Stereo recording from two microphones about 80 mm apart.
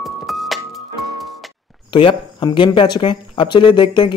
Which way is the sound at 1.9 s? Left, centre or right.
Left.